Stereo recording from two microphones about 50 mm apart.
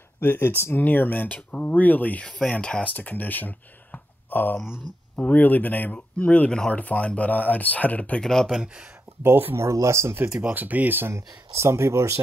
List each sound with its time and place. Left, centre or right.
0.2 s speech: left
2.2 s speech: left
8.2 s speech: centre
8.5 s speech: centre
9.2 s speech: right
9.6 s speech: right
10.5 s speech: right
11.1 s speech: right